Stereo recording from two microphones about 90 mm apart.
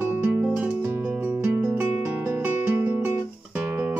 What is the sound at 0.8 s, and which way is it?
Music, 25° right (ahead or behind).